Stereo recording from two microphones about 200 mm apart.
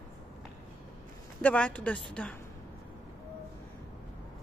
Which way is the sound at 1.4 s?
5° left (ahead or behind).